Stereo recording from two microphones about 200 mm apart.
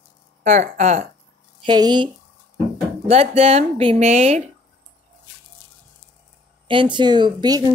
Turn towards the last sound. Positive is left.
turn(degrees=-20)  # may be behind; listen again after turning